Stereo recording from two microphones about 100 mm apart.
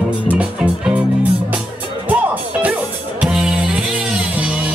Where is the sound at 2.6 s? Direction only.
15° right (ahead or behind).